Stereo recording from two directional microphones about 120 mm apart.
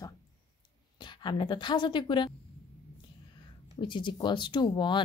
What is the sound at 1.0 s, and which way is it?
A woman's voice, 40° left (ahead or behind).